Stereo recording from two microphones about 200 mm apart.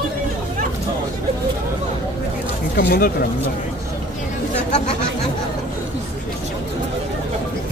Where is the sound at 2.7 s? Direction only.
45° left (ahead or behind).